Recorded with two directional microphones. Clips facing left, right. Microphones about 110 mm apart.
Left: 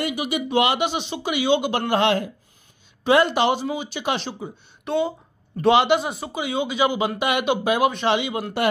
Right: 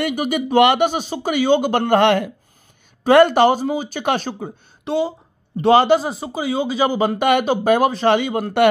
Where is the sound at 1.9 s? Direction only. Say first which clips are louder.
Right 5 dB; 60° right (ahead or behind).